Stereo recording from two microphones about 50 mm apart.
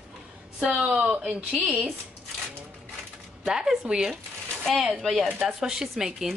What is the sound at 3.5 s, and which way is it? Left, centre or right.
Speech, centre.